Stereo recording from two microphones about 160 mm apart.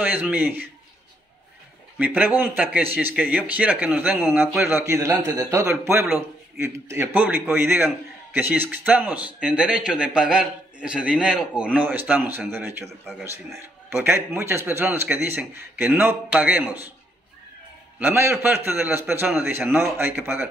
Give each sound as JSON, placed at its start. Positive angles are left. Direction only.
{"t": 0.0, "sound": "a man's voice", "side_deg": -10}
{"t": 2.0, "sound": "a man's voice", "side_deg": -10}
{"t": 17.9, "sound": "a man's voice", "side_deg": -15}